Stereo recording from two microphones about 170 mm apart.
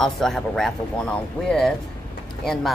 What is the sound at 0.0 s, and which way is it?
Speech, centre (ahead or behind).